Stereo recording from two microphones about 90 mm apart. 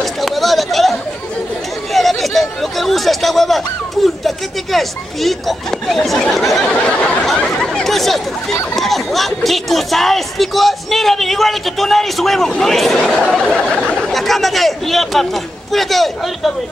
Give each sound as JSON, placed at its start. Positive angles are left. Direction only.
{"t": 0.0, "sound": "chatter", "side_deg": 0}
{"t": 2.0, "sound": "a sound", "side_deg": 0}
{"t": 4.7, "sound": "speech", "side_deg": 0}